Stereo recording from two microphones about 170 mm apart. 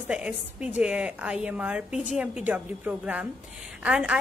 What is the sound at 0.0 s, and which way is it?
A woman's voice, 5° right (ahead or behind).